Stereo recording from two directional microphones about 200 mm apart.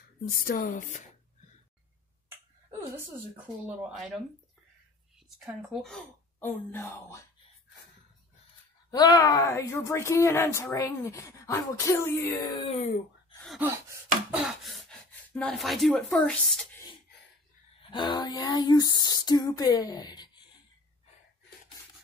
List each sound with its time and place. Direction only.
0.5 s speech: 45° left (ahead or behind)
3.3 s speech: 5° right (ahead or behind)
5.4 s speech: centre (ahead or behind)
8.9 s speech: 20° left (ahead or behind)
13.6 s a sound: 15° right (ahead or behind)
14.3 s gasp: centre (ahead or behind)
17.9 s a sound: 20° left (ahead or behind)